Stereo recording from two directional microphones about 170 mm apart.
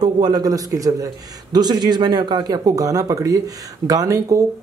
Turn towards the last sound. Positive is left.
turn(degrees=-20)  # may be behind; listen again after turning